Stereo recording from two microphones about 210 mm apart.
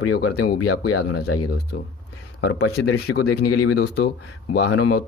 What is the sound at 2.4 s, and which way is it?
Speech, 90° left.